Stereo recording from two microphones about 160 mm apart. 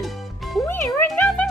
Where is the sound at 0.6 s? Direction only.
15° left (ahead or behind).